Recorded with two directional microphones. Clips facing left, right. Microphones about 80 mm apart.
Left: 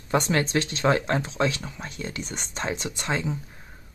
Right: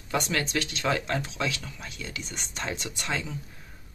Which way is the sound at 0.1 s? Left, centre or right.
Left.